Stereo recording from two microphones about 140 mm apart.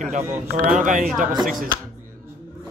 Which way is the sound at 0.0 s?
65° right (ahead or behind).